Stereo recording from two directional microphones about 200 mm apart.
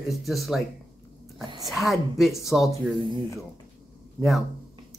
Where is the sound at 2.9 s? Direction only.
25° right (ahead or behind).